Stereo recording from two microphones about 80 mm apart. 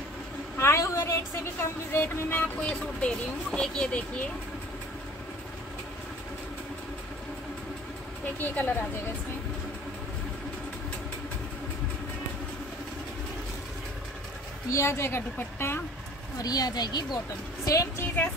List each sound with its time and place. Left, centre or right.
0.6 s a woman's voice: left; by 4.0 s centre
8.4 s a woman's voice: left
14.7 s a woman's voice: left
16.3 s speech: left
17.6 s a woman's voice: left